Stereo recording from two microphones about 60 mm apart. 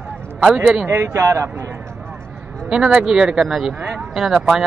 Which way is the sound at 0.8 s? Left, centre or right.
Right.